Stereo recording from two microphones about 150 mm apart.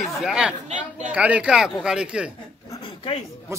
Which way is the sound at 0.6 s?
50° right (ahead or behind).